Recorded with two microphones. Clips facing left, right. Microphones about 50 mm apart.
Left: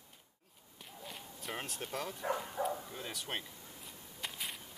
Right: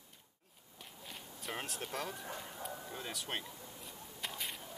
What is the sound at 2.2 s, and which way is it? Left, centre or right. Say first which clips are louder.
Speech: left 9 dB; left.